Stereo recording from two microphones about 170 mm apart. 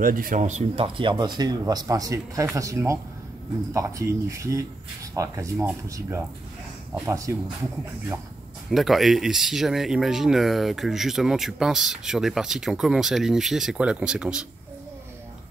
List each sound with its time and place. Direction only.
0.0 s speech: 55° right (ahead or behind); by 7.3 s 15° right (ahead or behind)
8.6 s speech: centre (ahead or behind)